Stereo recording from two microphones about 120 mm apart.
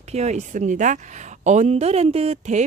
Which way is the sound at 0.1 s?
70° right (ahead or behind).